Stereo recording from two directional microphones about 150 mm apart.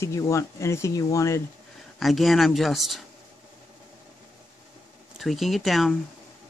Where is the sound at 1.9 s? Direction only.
Centre (ahead or behind).